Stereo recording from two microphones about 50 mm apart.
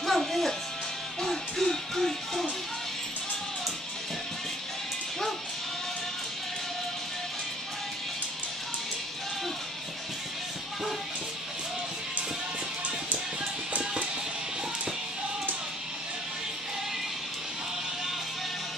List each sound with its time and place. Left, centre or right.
0.0 s music: centre